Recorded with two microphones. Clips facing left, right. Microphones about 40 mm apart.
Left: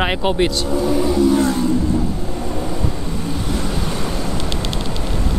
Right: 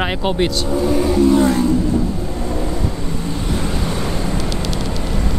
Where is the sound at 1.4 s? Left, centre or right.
Right.